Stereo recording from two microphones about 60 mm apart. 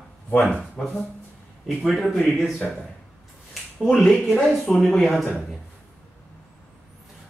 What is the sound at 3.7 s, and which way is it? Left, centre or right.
Speech, centre.